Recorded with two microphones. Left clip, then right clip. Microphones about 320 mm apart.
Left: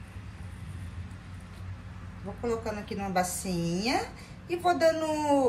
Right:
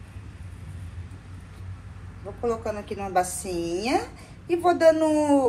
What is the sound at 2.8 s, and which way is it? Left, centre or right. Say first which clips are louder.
A woman's voice: right 5 dB; centre.